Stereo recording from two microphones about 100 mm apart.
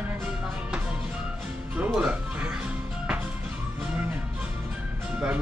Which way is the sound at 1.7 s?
10° right (ahead or behind).